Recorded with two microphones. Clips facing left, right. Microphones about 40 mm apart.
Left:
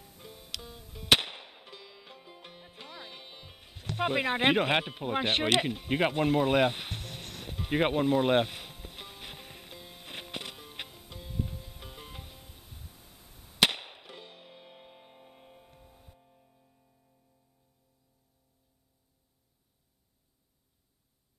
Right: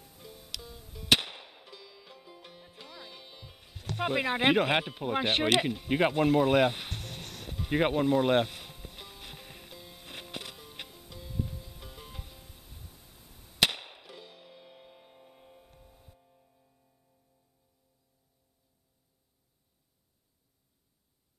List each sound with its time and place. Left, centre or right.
0.0 s music: centre